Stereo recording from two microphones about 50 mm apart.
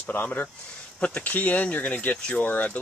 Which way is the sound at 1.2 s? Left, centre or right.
Left.